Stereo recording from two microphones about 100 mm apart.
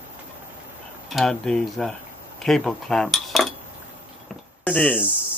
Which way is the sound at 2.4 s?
5° left (ahead or behind).